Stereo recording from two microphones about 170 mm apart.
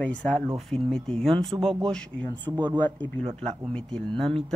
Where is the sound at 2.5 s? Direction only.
25° right (ahead or behind).